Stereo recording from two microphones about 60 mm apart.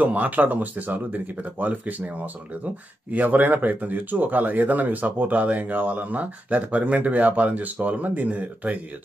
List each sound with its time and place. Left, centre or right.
0.0 s speech: right